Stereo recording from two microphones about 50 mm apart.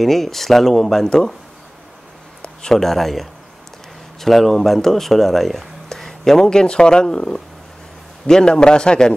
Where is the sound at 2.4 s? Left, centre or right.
Centre.